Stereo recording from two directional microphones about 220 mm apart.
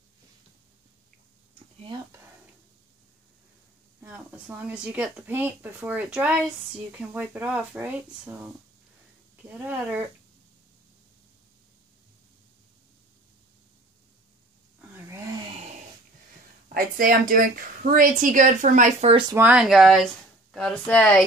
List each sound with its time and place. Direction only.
4.0 s speech: 10° right (ahead or behind)
14.8 s a sound: 10° right (ahead or behind)
16.6 s a woman's voice: 40° right (ahead or behind)
19.3 s speech: 5° right (ahead or behind)